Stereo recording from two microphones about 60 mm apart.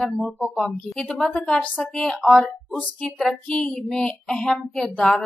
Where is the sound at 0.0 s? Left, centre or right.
Centre.